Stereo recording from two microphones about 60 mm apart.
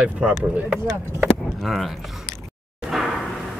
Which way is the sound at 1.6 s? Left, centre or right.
Centre.